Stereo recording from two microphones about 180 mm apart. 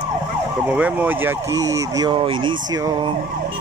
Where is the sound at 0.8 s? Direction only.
10° right (ahead or behind).